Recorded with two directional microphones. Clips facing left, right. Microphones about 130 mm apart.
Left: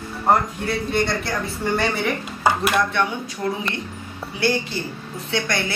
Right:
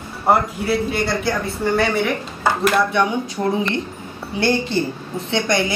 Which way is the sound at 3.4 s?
40° right (ahead or behind).